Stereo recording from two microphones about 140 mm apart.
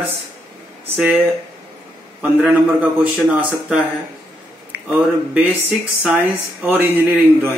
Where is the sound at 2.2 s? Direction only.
10° right (ahead or behind).